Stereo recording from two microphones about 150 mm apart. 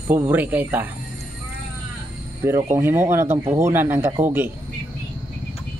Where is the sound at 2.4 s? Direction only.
15° right (ahead or behind).